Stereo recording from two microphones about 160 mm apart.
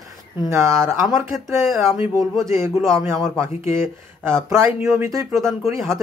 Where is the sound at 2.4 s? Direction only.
20° right (ahead or behind).